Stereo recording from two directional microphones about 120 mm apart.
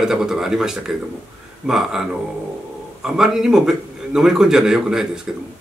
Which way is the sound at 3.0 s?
5° right (ahead or behind).